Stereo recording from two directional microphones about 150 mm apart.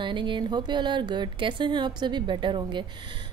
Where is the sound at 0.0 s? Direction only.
35° right (ahead or behind).